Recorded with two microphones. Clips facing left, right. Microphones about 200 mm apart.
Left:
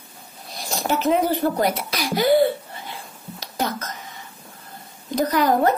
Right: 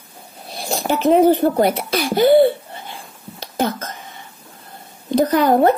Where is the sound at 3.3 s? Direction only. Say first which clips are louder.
Right 5 dB; 30° right (ahead or behind).